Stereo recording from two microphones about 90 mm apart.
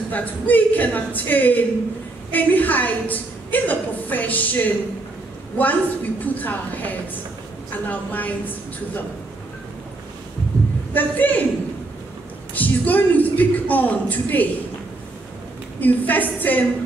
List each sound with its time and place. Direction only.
0.1 s a woman's voice: 20° left (ahead or behind)
10.9 s a woman's voice: 20° left (ahead or behind)
12.5 s a woman's voice: 20° left (ahead or behind)
15.8 s a woman's voice: 20° left (ahead or behind)